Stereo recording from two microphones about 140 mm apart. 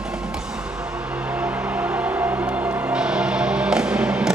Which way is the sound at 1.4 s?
10° right (ahead or behind).